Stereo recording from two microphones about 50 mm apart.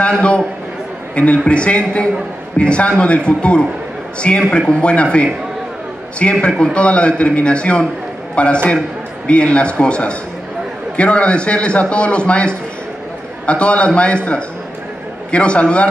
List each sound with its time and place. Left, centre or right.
0.2 s a man's voice: left
13.5 s a man's voice: left